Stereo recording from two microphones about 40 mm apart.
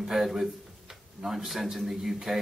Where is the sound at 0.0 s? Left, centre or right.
Centre.